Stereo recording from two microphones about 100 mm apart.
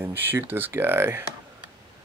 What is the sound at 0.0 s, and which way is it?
Speech, 20° right (ahead or behind).